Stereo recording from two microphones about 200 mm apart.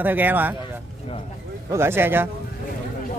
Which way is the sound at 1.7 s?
10° right (ahead or behind).